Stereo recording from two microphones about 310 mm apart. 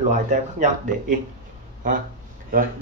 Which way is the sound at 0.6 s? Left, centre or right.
Right.